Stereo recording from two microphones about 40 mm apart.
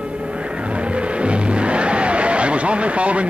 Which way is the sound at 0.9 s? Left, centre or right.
Right.